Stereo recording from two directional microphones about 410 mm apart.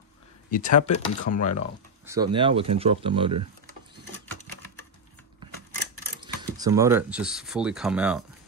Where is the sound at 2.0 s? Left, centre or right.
Centre.